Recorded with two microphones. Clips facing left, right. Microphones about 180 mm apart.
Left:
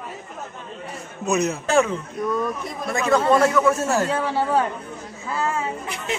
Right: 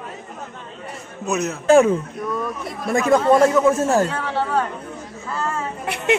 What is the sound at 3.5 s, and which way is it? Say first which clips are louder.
Speech: right 3 dB; 20° right (ahead or behind).